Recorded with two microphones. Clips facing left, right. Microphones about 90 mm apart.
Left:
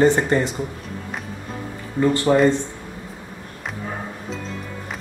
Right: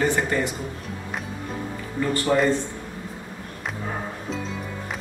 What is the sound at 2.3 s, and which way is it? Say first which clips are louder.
Speech: left 4 dB; 15° left (ahead or behind).